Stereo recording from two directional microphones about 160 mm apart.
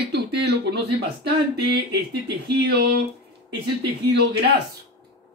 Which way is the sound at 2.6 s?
90° right.